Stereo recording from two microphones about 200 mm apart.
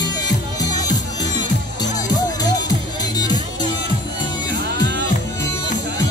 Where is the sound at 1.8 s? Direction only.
20° left (ahead or behind).